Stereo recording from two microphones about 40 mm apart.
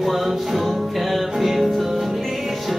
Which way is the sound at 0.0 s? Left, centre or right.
Centre.